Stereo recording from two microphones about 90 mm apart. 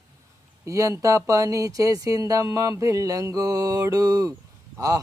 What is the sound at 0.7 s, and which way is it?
Mantra, 35° right (ahead or behind).